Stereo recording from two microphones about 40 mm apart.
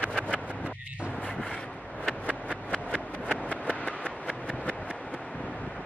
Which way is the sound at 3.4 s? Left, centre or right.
Left.